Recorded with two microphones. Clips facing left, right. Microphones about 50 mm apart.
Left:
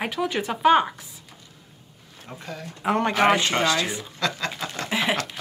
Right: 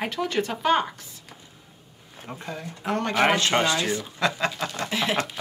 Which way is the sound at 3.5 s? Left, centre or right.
Centre.